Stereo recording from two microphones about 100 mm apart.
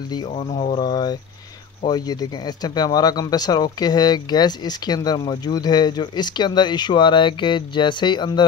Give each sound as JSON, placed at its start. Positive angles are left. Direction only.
{"t": 0.4, "sound": "speech", "side_deg": 90}
{"t": 0.7, "sound": "speech", "side_deg": 45}